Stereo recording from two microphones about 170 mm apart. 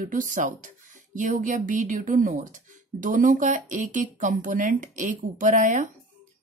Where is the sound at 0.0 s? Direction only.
50° right (ahead or behind).